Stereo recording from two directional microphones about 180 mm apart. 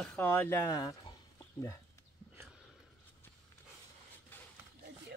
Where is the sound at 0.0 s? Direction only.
5° left (ahead or behind); by 1.1 s 20° left (ahead or behind).